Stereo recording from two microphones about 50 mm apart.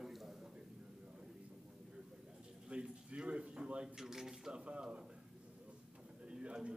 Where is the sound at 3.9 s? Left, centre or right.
Centre.